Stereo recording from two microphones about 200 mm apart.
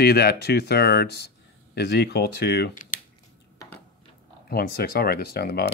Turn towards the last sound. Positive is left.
turn(degrees=50)  # may be behind; listen again after turning